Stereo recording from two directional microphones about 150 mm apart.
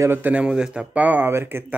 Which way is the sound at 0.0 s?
15° right (ahead or behind).